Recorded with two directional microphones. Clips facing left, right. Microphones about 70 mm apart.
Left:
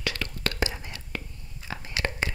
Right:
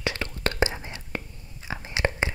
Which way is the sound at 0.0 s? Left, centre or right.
Right.